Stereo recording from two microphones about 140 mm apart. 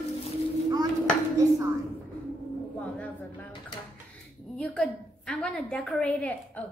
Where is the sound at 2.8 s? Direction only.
10° left (ahead or behind).